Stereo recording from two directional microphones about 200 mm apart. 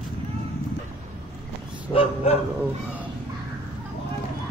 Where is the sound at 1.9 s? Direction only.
30° left (ahead or behind).